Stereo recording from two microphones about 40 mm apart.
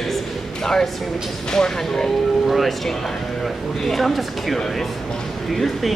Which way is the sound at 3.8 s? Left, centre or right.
Centre.